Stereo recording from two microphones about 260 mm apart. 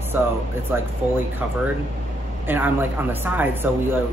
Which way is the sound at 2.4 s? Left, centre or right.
Centre.